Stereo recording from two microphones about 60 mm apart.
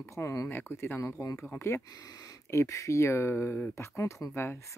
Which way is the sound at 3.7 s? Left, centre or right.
Left.